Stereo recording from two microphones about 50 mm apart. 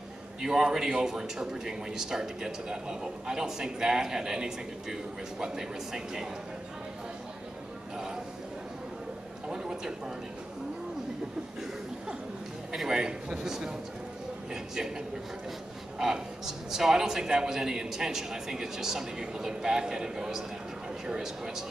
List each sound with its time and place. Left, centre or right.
0.4 s speech: centre
9.5 s a sound: centre
12.7 s speech: centre
16.0 s speech: centre